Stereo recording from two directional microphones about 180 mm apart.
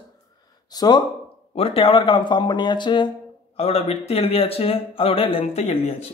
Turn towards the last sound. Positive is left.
turn(degrees=35)  # may be behind; listen again after turning